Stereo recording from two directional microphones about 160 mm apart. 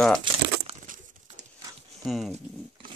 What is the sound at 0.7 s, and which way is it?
Crumpling, 40° right (ahead or behind).